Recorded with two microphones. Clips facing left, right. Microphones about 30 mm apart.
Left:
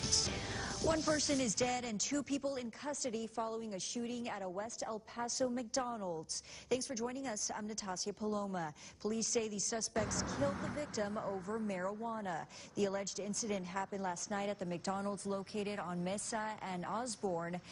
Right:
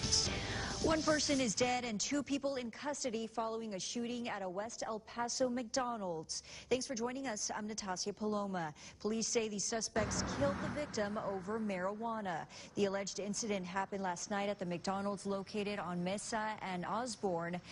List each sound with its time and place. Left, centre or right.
0.0 s music: centre
0.9 s a woman's voice: centre
1.7 s a woman's voice: right
13.0 s a woman's voice: centre